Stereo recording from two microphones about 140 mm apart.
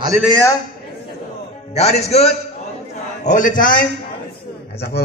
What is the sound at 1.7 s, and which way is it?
Speech, 50° left (ahead or behind).